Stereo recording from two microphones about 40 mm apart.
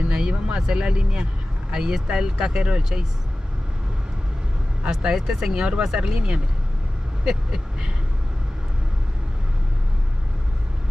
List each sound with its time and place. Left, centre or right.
0.0 s a sound: right
1.7 s speech: centre
4.8 s speech: right